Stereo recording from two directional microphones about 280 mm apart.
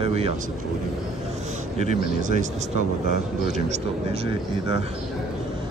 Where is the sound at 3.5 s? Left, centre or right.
Right.